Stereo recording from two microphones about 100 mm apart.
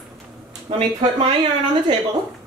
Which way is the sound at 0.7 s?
85° right.